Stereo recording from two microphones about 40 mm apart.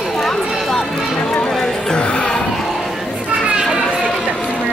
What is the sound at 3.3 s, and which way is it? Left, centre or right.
Chatter, right.